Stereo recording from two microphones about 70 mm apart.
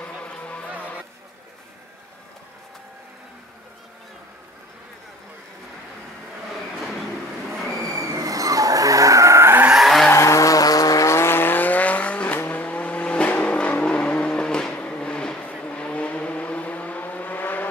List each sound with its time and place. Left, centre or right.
0.0 s music: centre
8.2 s vehicle: right
9.8 s skidding: centre
10.1 s vehicle: left